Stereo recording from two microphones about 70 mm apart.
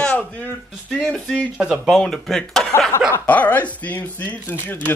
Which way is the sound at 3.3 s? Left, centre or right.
Left.